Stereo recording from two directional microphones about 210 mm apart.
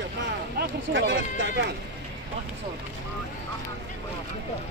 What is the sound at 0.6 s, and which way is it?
Speech, 60° right (ahead or behind).